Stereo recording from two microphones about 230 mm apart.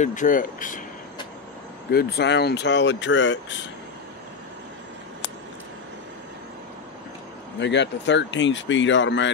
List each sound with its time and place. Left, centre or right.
0.0 s speech: left
1.9 s speech: left
7.6 s speech: left